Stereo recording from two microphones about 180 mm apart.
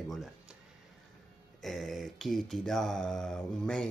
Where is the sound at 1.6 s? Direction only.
Centre (ahead or behind).